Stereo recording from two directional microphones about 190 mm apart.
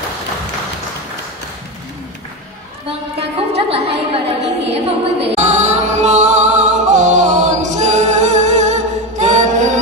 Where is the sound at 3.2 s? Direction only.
30° right (ahead or behind).